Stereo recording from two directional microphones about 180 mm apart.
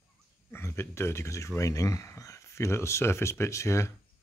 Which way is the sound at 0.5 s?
15° left (ahead or behind).